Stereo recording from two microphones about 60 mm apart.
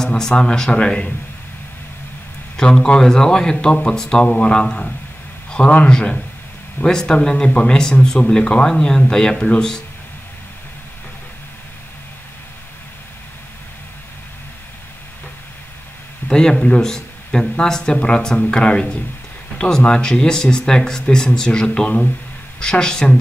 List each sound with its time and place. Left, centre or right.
0.0 s speech: centre
2.5 s speech: centre
16.3 s speech: centre